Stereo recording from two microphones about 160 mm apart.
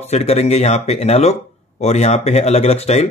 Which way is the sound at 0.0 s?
40° left (ahead or behind).